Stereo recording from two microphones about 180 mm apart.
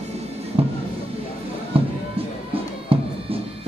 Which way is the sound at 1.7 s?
30° right (ahead or behind).